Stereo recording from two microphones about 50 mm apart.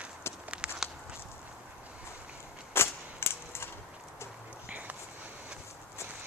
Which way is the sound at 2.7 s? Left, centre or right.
Left.